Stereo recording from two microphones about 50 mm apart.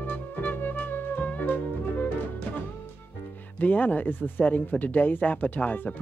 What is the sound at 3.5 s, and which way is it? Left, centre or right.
Speech, left.